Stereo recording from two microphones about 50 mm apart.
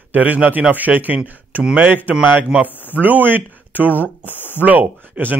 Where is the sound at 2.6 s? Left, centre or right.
Left.